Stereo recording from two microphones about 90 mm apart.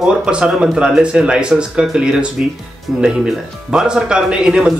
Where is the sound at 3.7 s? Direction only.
10° right (ahead or behind).